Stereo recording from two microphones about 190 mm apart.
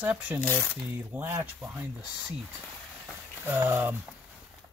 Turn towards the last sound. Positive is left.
turn(degrees=-10)  # may be behind; listen again after turning